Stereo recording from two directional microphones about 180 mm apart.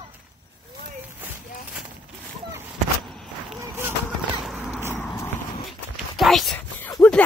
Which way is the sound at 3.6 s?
15° right (ahead or behind).